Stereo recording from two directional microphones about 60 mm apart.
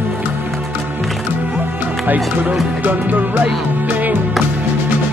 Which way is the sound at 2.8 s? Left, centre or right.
Right.